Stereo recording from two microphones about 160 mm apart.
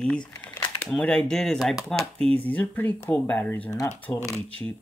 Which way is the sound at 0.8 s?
5° left (ahead or behind).